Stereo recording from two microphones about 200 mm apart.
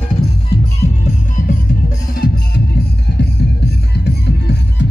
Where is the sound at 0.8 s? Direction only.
35° left (ahead or behind).